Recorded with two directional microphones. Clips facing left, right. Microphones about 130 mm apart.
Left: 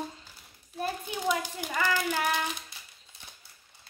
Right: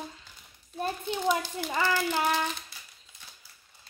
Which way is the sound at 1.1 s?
10° left (ahead or behind).